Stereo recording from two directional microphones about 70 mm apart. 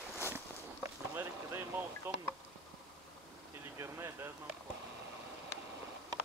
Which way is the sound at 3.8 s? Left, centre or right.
Right.